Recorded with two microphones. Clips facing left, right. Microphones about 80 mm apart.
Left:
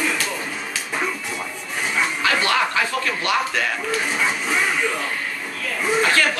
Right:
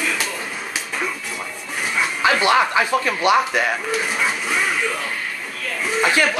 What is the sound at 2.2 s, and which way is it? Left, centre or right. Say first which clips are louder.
Music: right 6 dB; right.